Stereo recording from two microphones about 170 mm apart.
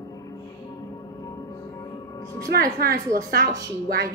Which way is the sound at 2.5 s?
75° right (ahead or behind).